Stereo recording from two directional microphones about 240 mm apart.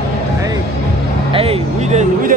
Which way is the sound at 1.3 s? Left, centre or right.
Right.